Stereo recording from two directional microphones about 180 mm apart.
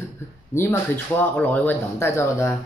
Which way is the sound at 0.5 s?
10° left (ahead or behind).